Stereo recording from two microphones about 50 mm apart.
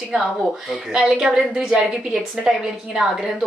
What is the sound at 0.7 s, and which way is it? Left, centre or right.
A woman's voice, centre.